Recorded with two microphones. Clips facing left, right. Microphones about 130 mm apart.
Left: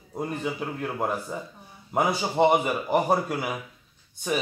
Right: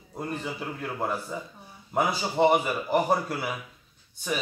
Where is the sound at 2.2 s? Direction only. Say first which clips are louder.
Left 1 dB; 15° left (ahead or behind).